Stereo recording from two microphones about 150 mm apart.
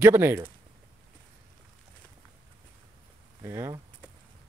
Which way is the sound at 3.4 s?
20° right (ahead or behind).